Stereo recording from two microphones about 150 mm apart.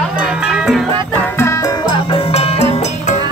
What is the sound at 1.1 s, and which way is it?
Music, 15° left (ahead or behind).